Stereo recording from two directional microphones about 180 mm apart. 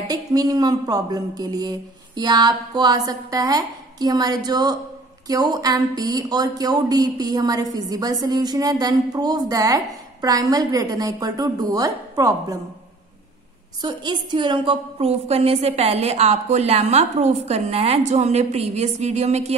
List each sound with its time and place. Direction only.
0.1 s speech: 20° right (ahead or behind)
13.7 s a woman's voice: 25° right (ahead or behind)